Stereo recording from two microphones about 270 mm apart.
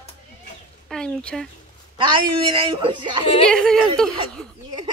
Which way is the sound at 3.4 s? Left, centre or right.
Centre.